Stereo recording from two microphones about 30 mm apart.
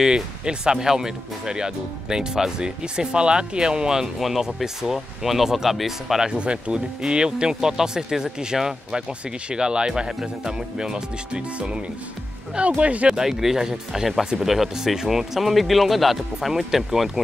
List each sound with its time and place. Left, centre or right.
0.1 s speech: right
4.2 s speech: centre
6.2 s speech: right
12.5 s speech: right
13.1 s speech: centre
14.4 s speech: centre